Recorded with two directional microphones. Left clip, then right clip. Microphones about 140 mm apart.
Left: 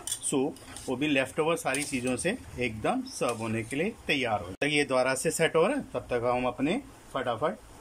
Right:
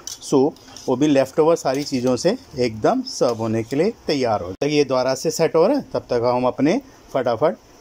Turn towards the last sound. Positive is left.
turn(degrees=-50)  # may be behind; listen again after turning